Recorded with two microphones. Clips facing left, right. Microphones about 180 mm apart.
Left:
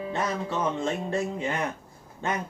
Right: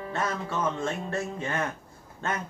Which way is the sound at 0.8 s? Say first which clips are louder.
Left 3 dB; 15° left (ahead or behind).